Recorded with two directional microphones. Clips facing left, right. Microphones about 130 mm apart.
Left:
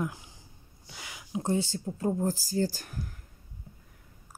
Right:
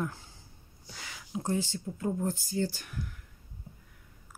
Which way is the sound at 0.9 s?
10° left (ahead or behind).